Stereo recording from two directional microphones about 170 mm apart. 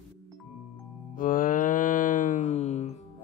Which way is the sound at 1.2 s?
50° left (ahead or behind).